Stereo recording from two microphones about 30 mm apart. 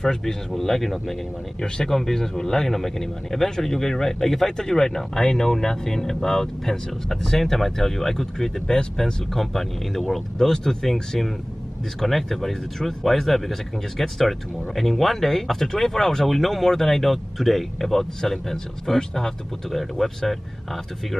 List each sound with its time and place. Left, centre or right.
0.0 s speech: centre
8.6 s speech: centre
9.3 s speech: centre
10.5 s speech: centre
12.0 s speech: centre
19.7 s speech: centre